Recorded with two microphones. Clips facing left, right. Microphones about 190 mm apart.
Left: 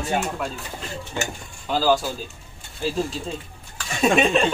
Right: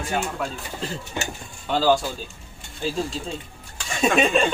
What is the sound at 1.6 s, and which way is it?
Speech, centre (ahead or behind).